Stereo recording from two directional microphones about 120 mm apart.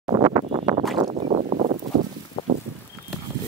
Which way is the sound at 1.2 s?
55° right (ahead or behind).